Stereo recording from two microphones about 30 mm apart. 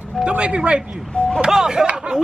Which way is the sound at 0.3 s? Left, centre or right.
Right.